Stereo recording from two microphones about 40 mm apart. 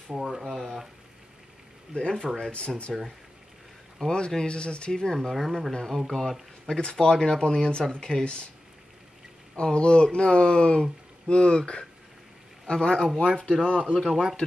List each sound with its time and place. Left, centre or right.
0.2 s speech: centre
2.0 s speech: left
2.9 s speech: centre
4.0 s speech: left
5.3 s speech: centre
5.7 s speech: centre
6.7 s speech: centre
9.6 s speech: left
13.7 s speech: right
13.9 s speech: centre